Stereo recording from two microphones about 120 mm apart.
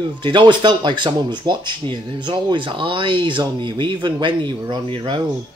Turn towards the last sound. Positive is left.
turn(degrees=-35)  # may be behind; listen again after turning